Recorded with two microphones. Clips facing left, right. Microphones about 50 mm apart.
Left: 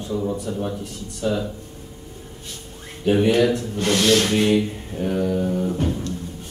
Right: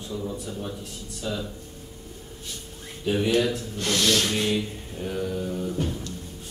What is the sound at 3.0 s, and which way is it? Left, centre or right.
Speech, left.